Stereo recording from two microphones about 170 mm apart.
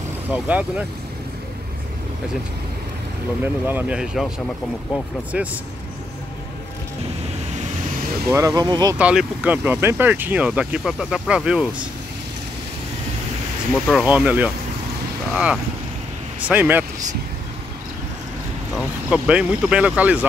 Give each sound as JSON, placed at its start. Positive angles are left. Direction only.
{"t": 0.3, "sound": "speech", "side_deg": -10}
{"t": 3.6, "sound": "speech", "side_deg": -10}
{"t": 5.3, "sound": "speech", "side_deg": -10}
{"t": 8.3, "sound": "speech", "side_deg": -20}
{"t": 8.9, "sound": "speech", "side_deg": -10}
{"t": 13.8, "sound": "speech", "side_deg": -5}
{"t": 19.0, "sound": "speech", "side_deg": -5}